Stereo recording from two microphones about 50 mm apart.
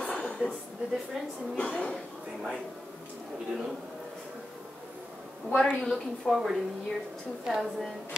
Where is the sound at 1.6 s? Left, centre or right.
Left.